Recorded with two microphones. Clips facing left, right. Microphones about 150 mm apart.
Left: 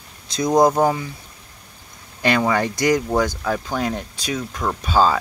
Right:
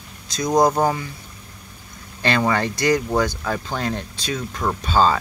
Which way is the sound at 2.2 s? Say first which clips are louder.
Left 1 dB; 10° left (ahead or behind).